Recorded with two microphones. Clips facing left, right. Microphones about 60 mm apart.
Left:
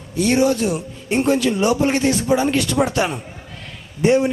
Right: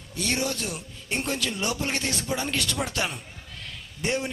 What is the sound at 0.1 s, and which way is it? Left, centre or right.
A man's voice, centre.